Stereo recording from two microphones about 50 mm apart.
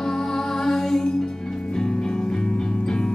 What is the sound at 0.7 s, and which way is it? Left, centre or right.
Music, centre.